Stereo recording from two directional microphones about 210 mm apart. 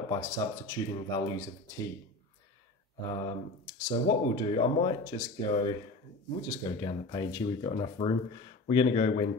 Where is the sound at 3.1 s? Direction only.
15° left (ahead or behind).